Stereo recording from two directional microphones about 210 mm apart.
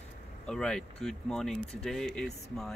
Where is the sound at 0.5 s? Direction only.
5° left (ahead or behind).